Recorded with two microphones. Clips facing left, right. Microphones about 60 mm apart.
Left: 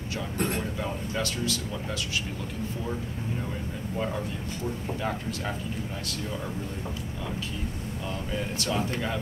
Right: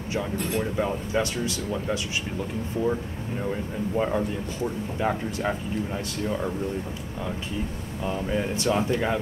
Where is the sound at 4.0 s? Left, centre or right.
Right.